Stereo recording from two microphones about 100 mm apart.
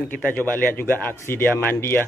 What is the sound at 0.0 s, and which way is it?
Speech, 15° left (ahead or behind).